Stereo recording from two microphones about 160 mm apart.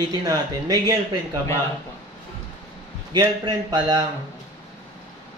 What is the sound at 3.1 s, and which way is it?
Speech, 25° right (ahead or behind).